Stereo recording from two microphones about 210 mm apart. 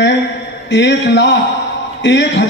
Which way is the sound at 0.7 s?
55° left (ahead or behind).